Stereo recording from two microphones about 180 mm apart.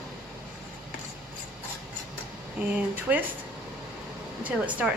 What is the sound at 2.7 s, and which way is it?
Speech, 10° right (ahead or behind).